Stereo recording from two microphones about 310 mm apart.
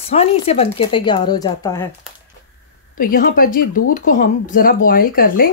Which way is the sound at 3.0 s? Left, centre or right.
Left.